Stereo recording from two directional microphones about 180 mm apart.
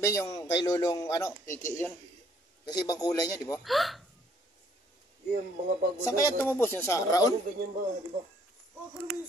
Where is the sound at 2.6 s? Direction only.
20° left (ahead or behind).